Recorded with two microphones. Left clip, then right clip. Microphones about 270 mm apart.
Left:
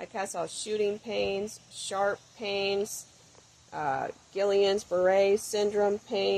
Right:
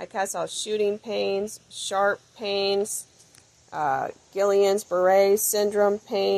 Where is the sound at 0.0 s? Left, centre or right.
Right.